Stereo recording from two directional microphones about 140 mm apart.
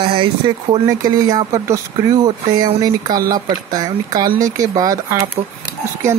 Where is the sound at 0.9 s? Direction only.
25° right (ahead or behind).